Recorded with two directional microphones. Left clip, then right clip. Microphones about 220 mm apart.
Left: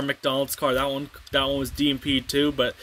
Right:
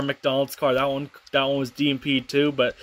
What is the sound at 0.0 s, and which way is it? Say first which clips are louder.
Speech: right 1 dB; 10° left (ahead or behind).